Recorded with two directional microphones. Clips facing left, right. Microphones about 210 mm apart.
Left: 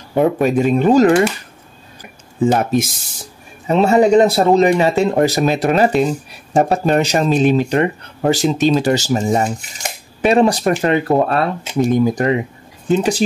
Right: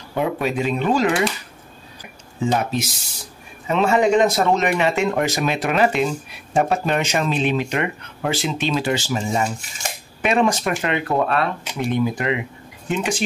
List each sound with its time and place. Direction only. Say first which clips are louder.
0.1 s speech: left 8 dB; 45° left (ahead or behind)
2.4 s speech: left 6 dB; 50° left (ahead or behind)
3.6 s speech: left 5 dB; 40° left (ahead or behind)